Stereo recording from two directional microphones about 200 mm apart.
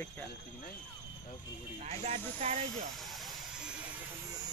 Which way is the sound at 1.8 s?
35° right (ahead or behind).